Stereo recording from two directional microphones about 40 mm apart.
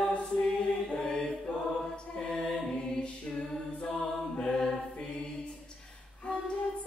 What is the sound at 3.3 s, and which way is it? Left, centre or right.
A capella, left.